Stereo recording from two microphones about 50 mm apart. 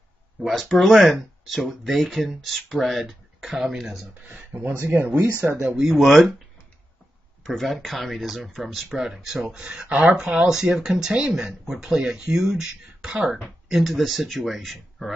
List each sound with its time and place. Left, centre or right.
0.4 s speech: centre
4.3 s speech: right
4.7 s speech: right
5.8 s speech: centre
7.4 s speech: centre
9.6 s speech: right
10.4 s speech: centre